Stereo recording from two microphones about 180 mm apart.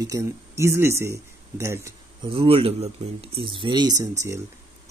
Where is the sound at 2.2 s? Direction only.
30° right (ahead or behind).